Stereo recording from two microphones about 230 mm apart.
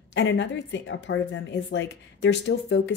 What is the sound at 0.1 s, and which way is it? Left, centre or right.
A woman's voice, left.